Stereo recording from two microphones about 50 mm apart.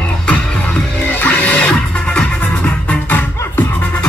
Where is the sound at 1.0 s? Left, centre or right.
Left.